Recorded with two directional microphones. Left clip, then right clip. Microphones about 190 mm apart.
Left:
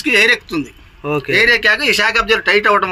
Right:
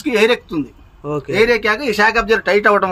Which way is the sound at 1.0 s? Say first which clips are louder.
Left 4 dB; 5° left (ahead or behind).